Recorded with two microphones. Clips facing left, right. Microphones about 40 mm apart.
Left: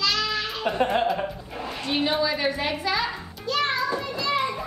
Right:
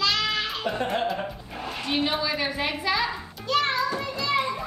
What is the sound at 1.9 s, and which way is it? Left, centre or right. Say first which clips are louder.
Speech: left 1 dB; centre.